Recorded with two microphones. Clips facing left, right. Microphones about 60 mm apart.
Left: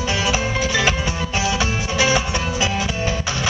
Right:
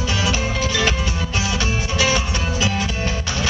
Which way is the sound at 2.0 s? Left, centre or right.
Left.